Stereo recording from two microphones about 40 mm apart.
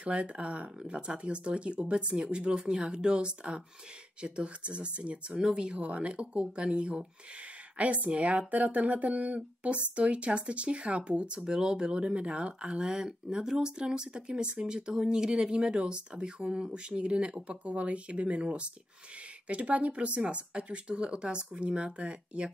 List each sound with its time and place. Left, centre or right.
0.0 s speech: right
7.7 s speech: right